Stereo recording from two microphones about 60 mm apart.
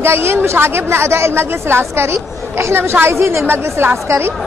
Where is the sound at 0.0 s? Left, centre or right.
Right.